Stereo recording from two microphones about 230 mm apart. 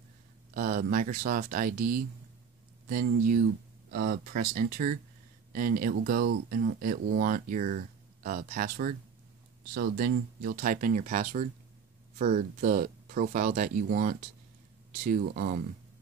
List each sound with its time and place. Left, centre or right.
0.6 s speech: right